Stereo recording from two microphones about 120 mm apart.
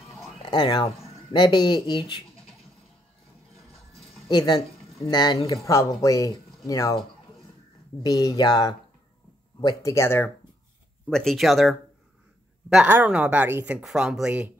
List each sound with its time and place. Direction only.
0.4 s speech: 40° left (ahead or behind)
4.3 s speech: 35° left (ahead or behind)
8.0 s speech: 35° left (ahead or behind)
9.8 s speech: 25° left (ahead or behind)
11.1 s a woman's voice: 5° left (ahead or behind)